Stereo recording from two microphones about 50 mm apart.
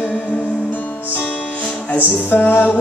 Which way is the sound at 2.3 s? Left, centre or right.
Left.